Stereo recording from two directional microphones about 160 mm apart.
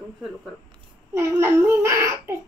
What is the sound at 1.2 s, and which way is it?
A child's voice, 15° right (ahead or behind).